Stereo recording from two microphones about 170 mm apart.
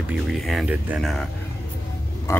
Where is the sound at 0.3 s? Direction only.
Centre (ahead or behind).